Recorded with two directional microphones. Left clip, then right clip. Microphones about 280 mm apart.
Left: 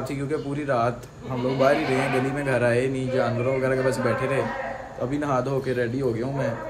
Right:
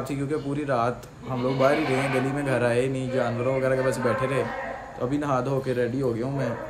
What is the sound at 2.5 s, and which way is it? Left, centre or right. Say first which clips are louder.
A man's voice: left 2 dB; centre.